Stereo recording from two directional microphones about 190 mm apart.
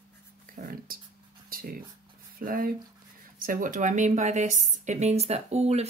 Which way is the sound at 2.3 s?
50° right (ahead or behind).